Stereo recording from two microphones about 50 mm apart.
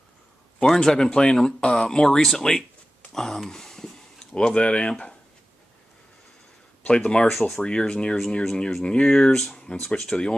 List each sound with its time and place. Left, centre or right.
0.6 s a man's voice: centre
6.9 s speech: left
7.2 s speech: centre
7.6 s speech: centre
8.8 s speech: left
9.3 s speech: centre